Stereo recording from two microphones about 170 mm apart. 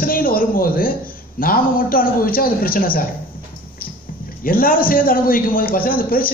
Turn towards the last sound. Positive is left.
turn(degrees=55)  # may be behind; listen again after turning